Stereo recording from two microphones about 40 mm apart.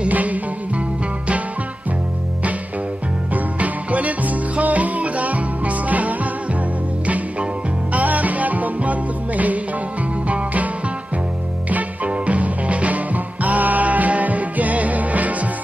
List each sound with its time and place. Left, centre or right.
0.1 s music: right
3.5 s music: right
7.9 s music: right
10.2 s music: right
11.7 s music: right